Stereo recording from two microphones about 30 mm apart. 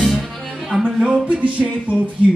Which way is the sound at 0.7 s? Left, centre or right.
Centre.